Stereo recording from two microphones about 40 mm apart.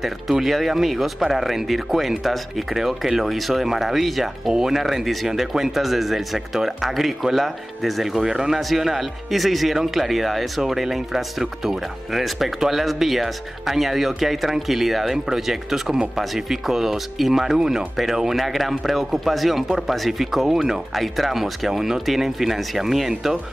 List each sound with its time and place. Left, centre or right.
0.0 s speech: centre
8.2 s speech: centre